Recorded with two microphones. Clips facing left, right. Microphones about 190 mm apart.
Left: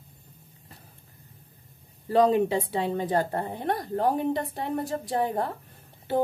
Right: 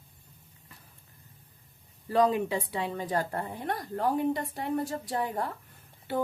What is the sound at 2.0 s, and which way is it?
A woman's voice, 30° left (ahead or behind).